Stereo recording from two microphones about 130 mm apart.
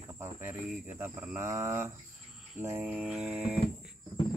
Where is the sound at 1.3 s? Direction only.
20° right (ahead or behind).